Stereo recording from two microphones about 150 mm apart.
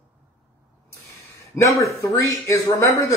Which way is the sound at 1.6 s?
20° left (ahead or behind).